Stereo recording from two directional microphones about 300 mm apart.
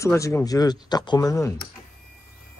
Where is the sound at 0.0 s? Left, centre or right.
Centre.